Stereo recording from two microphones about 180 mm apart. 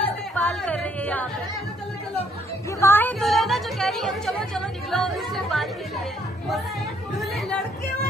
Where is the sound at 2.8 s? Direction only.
10° left (ahead or behind).